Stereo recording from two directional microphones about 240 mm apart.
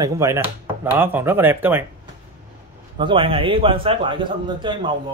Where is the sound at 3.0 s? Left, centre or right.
Right.